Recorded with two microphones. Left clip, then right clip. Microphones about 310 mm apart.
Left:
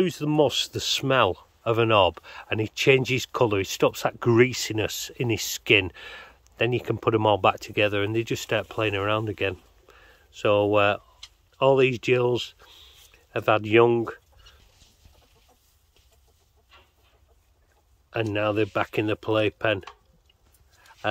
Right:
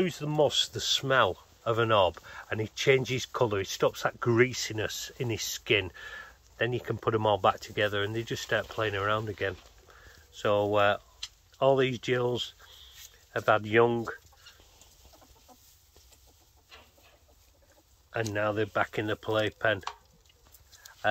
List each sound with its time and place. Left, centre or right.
0.0 s speech: left
18.1 s speech: left
21.0 s speech: left